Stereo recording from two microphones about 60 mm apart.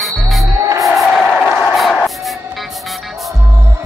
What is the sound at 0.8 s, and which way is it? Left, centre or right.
Music, centre.